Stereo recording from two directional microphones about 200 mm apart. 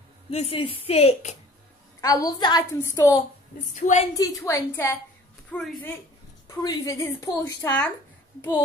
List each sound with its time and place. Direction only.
0.3 s a woman's voice: 30° left (ahead or behind)
2.0 s a woman's voice: 20° left (ahead or behind)
3.7 s a woman's voice: 35° left (ahead or behind)
4.1 s a woman's voice: 15° left (ahead or behind)
6.6 s a woman's voice: 20° left (ahead or behind)